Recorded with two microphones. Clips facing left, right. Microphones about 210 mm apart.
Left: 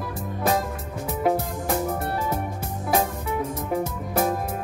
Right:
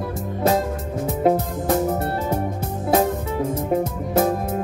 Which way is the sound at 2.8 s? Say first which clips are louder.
Right 5 dB; 25° right (ahead or behind).